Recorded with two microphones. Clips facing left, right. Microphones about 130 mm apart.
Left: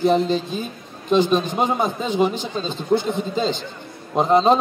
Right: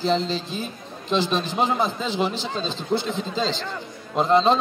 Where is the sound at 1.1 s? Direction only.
50° left (ahead or behind).